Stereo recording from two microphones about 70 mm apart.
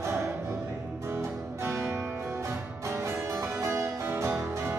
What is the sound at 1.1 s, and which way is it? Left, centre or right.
Music, right.